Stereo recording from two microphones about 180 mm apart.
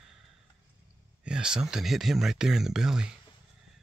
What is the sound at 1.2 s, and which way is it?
Speech, 5° right (ahead or behind).